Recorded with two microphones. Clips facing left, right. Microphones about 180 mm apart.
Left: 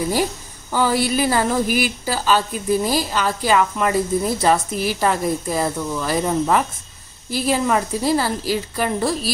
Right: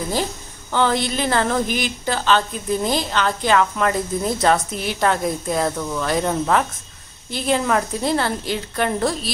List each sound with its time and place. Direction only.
0.1 s a woman's voice: 10° left (ahead or behind)